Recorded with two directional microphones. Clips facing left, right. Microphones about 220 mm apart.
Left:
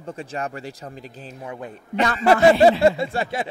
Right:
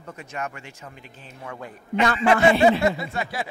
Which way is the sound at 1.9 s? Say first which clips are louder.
Left 1 dB; 40° left (ahead or behind).